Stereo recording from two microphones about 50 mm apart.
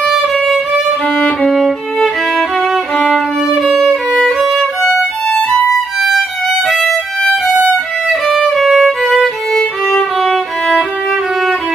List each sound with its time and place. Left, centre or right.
0.0 s music: centre
3.8 s violin: centre
6.7 s violin: centre
9.2 s music: centre